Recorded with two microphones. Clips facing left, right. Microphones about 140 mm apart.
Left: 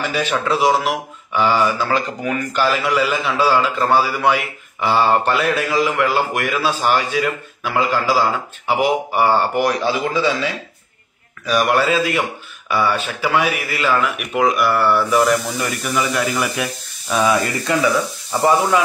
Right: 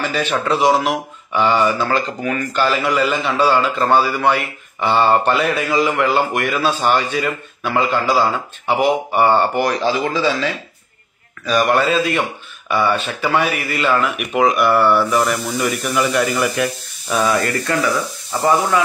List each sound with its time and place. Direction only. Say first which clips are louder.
0.1 s a man's voice: left 1 dB; 5° left (ahead or behind)
17.2 s speech: even; 15° left (ahead or behind)